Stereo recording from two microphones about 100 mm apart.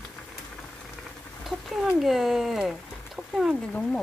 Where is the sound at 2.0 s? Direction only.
5° right (ahead or behind).